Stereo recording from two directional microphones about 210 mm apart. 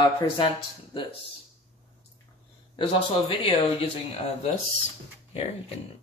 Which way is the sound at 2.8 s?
25° left (ahead or behind).